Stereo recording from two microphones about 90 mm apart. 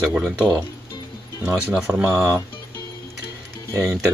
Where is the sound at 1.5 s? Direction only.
10° right (ahead or behind).